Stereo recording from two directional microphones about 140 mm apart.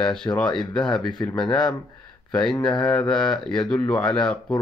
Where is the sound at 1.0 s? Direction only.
30° left (ahead or behind).